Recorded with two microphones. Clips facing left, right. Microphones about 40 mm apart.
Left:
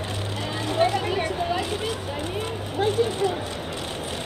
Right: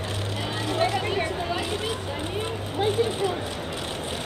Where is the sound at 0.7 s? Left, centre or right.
Centre.